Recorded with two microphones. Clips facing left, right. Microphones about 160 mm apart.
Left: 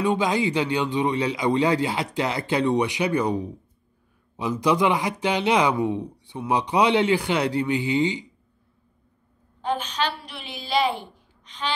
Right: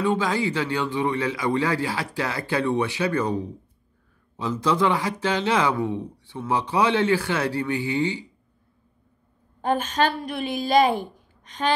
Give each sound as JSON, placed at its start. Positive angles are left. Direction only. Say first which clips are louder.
{"t": 0.0, "sound": "a man's voice", "louder": "left 1 dB", "side_deg": 15}
{"t": 9.6, "sound": "a woman's voice", "louder": "right 4 dB", "side_deg": -50}